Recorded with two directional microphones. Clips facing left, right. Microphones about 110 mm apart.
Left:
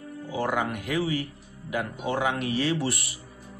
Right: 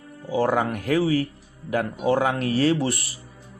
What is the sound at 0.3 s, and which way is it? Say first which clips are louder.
Speech: right 6 dB; 35° right (ahead or behind).